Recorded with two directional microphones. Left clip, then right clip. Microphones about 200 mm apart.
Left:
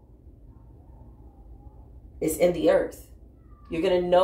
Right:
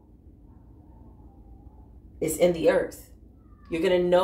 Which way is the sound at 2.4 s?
20° right (ahead or behind).